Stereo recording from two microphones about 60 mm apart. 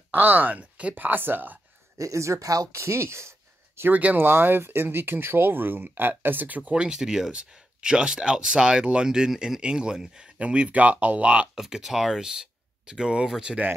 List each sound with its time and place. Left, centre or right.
0.1 s speech: right
0.9 s speech: right
2.0 s speech: right
2.7 s speech: right
3.9 s speech: right
4.3 s speech: right
11.5 s speech: centre